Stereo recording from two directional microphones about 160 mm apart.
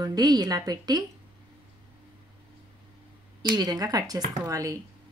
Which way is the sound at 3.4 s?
25° right (ahead or behind).